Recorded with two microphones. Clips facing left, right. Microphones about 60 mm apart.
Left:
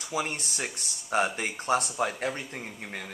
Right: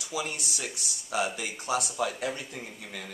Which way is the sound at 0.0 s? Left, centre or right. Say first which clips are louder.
Left 2 dB; left.